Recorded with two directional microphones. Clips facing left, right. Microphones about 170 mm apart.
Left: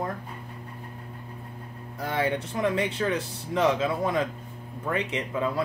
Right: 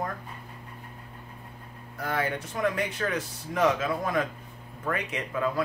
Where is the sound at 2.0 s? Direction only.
25° left (ahead or behind).